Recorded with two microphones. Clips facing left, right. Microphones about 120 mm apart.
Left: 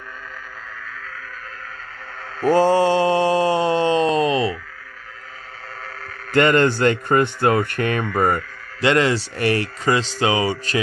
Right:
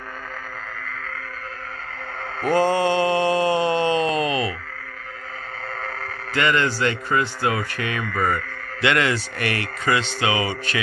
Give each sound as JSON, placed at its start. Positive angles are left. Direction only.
{"t": 2.4, "sound": "mantra", "side_deg": 30}
{"t": 6.3, "sound": "speech", "side_deg": 50}
{"t": 8.8, "sound": "speech", "side_deg": 30}